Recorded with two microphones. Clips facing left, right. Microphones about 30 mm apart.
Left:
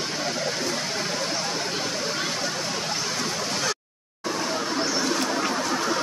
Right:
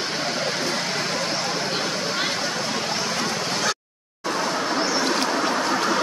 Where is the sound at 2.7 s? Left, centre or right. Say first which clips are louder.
Right 3 dB; right.